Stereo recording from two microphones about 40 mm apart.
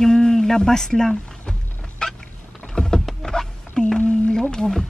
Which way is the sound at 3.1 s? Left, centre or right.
Centre.